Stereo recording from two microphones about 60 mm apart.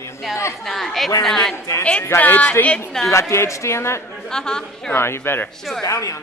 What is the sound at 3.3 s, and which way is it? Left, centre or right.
Speech, left.